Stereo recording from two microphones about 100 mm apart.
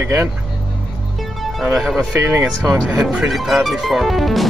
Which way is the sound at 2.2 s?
25° right (ahead or behind).